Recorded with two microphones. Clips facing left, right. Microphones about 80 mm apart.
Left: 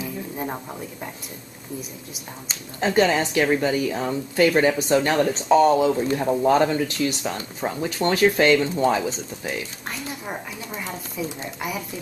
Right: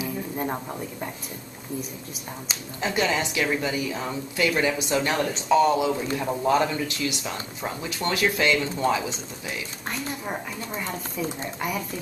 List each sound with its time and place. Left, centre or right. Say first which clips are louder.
0.4 s speech: right 1 dB; centre
2.8 s a woman's voice: left 6 dB; left
9.8 s speech: right 5 dB; centre